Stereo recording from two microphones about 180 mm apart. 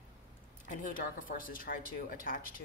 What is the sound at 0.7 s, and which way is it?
Speech, 50° left (ahead or behind).